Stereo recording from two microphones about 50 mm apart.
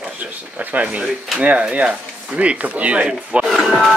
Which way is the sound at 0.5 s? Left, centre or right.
Right.